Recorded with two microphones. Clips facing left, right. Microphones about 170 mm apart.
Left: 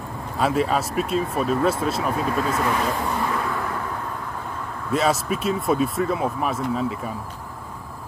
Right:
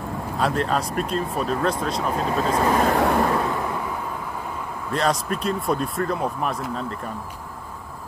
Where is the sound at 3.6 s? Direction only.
10° right (ahead or behind).